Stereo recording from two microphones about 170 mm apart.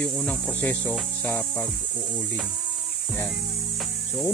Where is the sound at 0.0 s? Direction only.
10° left (ahead or behind).